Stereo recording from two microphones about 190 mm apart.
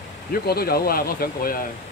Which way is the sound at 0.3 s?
55° left (ahead or behind).